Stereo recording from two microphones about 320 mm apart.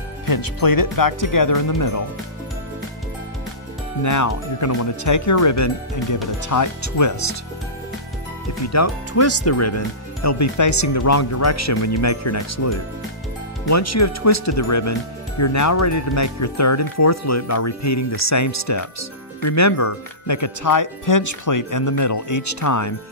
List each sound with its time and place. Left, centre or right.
0.3 s speech: left
4.0 s speech: left
8.6 s speech: left